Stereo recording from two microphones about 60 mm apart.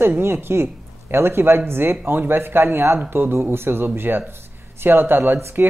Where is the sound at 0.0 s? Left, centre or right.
Right.